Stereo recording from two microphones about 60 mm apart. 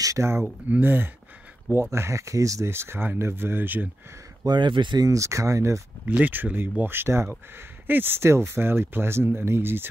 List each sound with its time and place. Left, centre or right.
0.0 s speech: right
0.7 s speech: right
1.9 s speech: right
2.7 s speech: right
4.4 s speech: right
5.0 s speech: right
6.0 s speech: right
8.2 s speech: right
8.5 s speech: right